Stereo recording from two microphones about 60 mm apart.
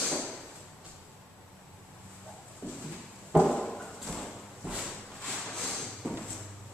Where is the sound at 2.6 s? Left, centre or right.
Right.